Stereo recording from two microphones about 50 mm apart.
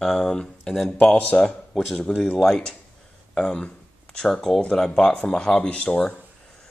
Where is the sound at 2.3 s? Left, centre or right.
Centre.